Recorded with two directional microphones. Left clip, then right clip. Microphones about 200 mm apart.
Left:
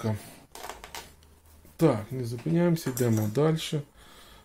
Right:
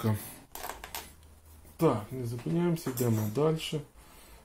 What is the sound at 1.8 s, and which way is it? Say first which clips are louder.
Speech: left 3 dB; 30° left (ahead or behind).